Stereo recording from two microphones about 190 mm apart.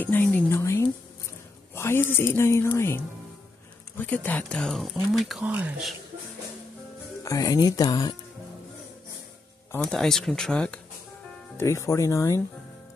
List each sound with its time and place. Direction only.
0.0 s speech: 10° left (ahead or behind)
7.2 s speech: 20° left (ahead or behind)
9.7 s speech: 5° left (ahead or behind)
11.5 s speech: 15° left (ahead or behind)